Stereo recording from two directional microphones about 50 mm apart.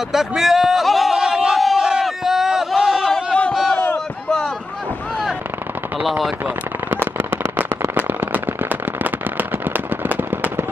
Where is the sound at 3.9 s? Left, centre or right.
Centre.